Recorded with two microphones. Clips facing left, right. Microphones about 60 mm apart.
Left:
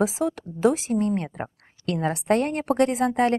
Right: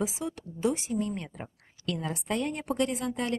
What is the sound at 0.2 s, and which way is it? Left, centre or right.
Speech, left.